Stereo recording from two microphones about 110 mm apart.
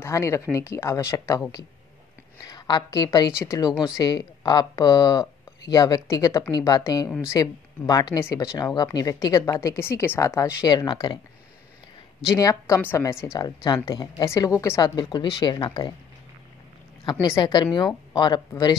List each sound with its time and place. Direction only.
0.0 s a woman's voice: 25° left (ahead or behind)
2.4 s a woman's voice: 40° left (ahead or behind)
3.7 s speech: 5° right (ahead or behind)
4.0 s a woman's voice: 40° left (ahead or behind)
10.7 s speech: 40° left (ahead or behind)
12.4 s a woman's voice: 30° left (ahead or behind)
17.0 s a woman's voice: 45° left (ahead or behind)